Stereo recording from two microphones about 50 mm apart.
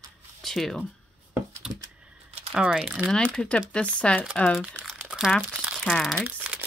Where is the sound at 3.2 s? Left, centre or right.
Centre.